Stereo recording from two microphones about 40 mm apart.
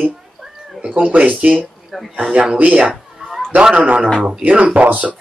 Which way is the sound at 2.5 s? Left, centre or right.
Right.